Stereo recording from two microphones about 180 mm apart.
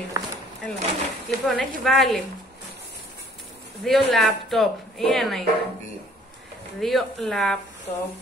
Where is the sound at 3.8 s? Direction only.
Centre (ahead or behind).